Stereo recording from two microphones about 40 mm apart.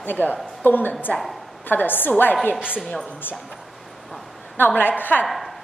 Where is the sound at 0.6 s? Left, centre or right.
Left.